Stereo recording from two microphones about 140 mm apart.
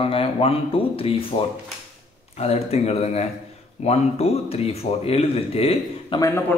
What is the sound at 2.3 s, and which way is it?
Speech, 50° left (ahead or behind).